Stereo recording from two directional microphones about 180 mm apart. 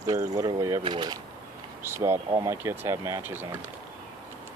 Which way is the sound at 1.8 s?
15° right (ahead or behind).